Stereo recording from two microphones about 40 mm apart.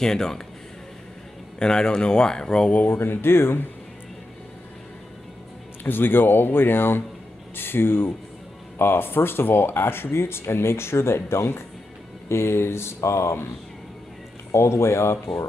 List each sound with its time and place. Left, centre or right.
0.0 s speech: centre
1.6 s speech: centre
2.9 s speech: left
5.9 s speech: left
14.8 s speech: left